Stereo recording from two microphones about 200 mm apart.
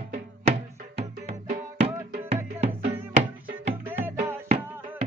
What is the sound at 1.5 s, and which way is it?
Music, 30° right (ahead or behind).